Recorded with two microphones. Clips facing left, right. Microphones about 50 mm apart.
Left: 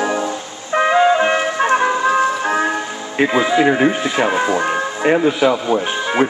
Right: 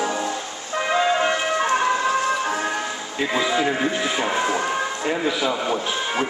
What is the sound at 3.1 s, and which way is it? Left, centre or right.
Speech, left.